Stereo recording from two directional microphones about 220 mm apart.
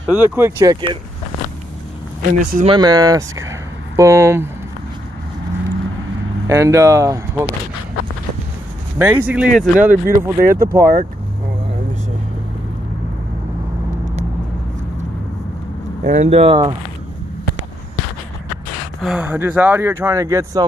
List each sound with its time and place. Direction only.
0.0 s speech: 5° right (ahead or behind)
2.3 s speech: 35° right (ahead or behind)
2.7 s speech: 20° right (ahead or behind)
6.4 s speech: 15° right (ahead or behind)
8.9 s speech: 10° right (ahead or behind)
16.0 s speech: 35° right (ahead or behind)
18.9 s speech: 5° right (ahead or behind)